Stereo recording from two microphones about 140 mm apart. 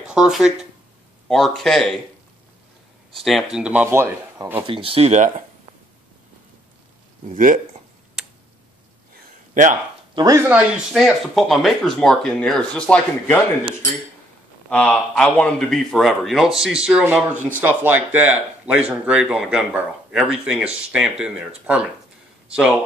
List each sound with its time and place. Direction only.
0.0 s speech: 5° right (ahead or behind)
3.2 s speech: centre (ahead or behind); by 4.6 s 15° right (ahead or behind)
4.6 s speech: 40° right (ahead or behind)
7.2 s speech: 70° right (ahead or behind)
9.5 s speech: 65° right (ahead or behind)
10.1 s speech: 25° right (ahead or behind)
10.5 s speech: 5° right (ahead or behind)
14.7 s speech: 10° left (ahead or behind); by 22.8 s 5° right (ahead or behind)